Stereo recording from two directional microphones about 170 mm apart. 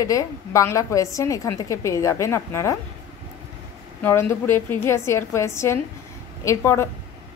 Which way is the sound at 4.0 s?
15° left (ahead or behind).